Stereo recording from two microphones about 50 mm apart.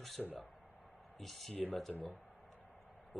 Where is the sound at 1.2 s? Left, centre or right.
Centre.